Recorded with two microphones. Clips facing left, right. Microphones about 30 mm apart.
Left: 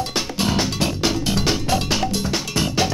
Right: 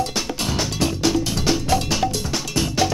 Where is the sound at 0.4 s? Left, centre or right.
Centre.